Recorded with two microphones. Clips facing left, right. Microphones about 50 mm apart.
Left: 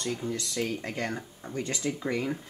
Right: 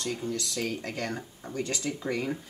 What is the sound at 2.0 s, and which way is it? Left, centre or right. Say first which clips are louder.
Speech: even; centre.